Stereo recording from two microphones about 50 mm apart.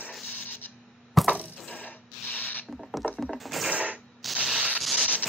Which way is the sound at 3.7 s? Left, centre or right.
Right.